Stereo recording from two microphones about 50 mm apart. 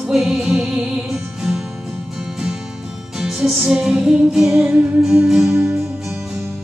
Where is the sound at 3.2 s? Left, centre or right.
Centre.